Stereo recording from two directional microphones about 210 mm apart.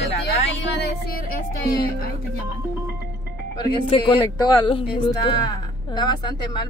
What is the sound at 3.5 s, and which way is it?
Speech, 20° left (ahead or behind).